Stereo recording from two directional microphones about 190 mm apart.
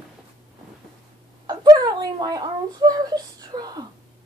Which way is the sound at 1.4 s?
20° right (ahead or behind).